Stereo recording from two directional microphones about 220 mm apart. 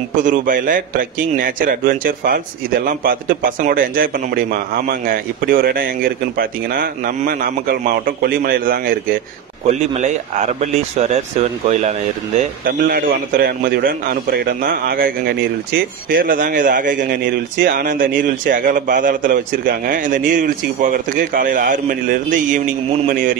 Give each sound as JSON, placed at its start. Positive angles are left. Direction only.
{"t": 0.2, "sound": "a man's voice", "side_deg": -35}
{"t": 12.6, "sound": "a man's voice", "side_deg": -40}